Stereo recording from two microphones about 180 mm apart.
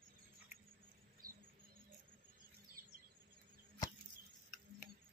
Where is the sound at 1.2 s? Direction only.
50° right (ahead or behind).